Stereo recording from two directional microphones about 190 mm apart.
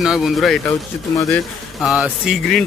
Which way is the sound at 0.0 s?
Centre (ahead or behind).